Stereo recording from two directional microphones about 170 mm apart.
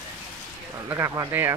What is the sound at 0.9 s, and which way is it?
Speech, 15° right (ahead or behind).